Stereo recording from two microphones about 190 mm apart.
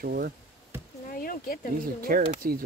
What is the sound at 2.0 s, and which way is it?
Speech, 50° right (ahead or behind).